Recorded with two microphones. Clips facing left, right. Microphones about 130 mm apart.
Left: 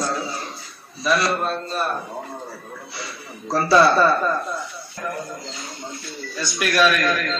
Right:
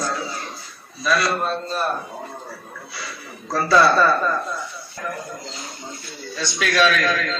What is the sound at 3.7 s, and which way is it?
Speech, 25° left (ahead or behind).